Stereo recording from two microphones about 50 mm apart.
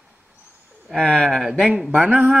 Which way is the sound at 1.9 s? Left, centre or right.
Right.